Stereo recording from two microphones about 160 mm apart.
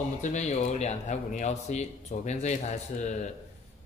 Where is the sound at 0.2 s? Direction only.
50° left (ahead or behind).